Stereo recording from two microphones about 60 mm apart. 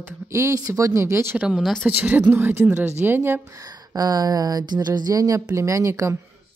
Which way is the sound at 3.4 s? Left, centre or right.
Right.